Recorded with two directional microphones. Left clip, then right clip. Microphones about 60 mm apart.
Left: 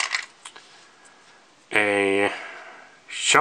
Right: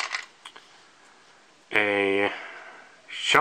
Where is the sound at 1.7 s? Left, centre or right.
Centre.